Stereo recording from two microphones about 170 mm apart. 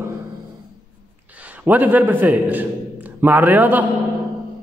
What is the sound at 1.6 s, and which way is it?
Speech, 10° right (ahead or behind).